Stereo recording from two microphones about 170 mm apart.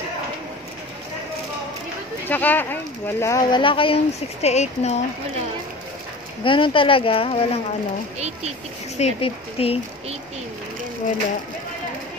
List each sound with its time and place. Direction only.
2.2 s speech: 10° left (ahead or behind); by 4.9 s 40° left (ahead or behind)
6.4 s speech: 30° left (ahead or behind)
8.9 s speech: 40° left (ahead or behind)